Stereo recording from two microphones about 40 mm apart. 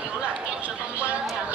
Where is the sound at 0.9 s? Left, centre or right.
Right.